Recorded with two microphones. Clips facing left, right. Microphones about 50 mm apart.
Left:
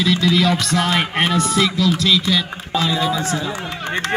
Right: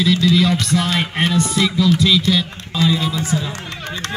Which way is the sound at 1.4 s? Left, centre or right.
Centre.